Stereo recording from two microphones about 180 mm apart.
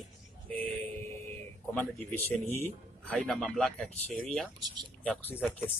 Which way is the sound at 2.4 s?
35° right (ahead or behind).